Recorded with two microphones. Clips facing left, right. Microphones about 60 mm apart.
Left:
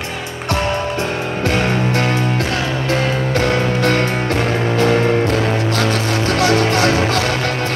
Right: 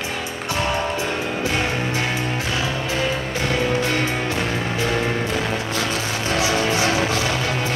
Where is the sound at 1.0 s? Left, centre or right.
Left.